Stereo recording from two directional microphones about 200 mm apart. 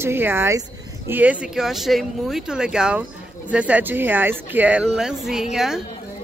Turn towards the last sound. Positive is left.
turn(degrees=0)  # may be behind; listen again after turning